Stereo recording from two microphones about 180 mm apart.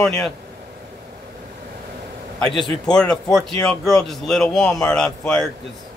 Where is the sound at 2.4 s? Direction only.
Centre (ahead or behind).